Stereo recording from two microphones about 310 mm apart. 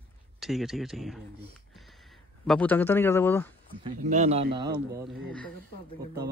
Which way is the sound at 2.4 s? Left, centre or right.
Centre.